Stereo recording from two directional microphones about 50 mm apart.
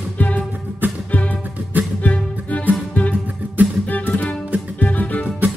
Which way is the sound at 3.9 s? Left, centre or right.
Left.